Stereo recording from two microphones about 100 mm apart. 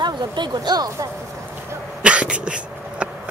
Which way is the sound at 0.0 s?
50° right (ahead or behind).